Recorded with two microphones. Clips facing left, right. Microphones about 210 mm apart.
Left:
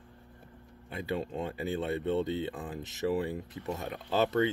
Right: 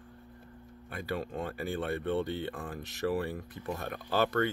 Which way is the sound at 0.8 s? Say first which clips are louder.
Left 2 dB; 20° left (ahead or behind).